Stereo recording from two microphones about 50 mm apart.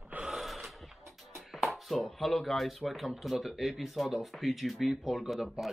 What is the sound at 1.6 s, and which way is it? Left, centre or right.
Speech, centre.